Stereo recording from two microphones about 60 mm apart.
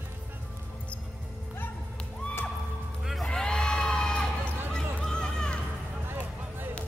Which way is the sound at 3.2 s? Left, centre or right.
Centre.